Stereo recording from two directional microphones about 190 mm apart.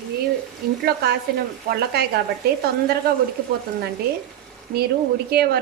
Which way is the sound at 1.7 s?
55° right (ahead or behind).